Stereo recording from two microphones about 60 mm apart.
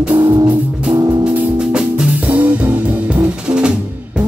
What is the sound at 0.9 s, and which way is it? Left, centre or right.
Music, right.